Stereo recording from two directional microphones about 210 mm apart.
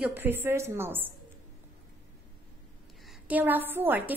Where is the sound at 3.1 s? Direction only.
5° right (ahead or behind).